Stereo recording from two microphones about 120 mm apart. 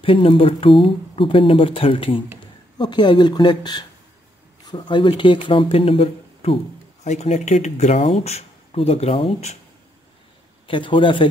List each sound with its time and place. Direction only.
0.0 s speech: 45° left (ahead or behind)
7.1 s speech: 70° left (ahead or behind); by 9.5 s 55° left (ahead or behind)
10.7 s speech: 45° left (ahead or behind)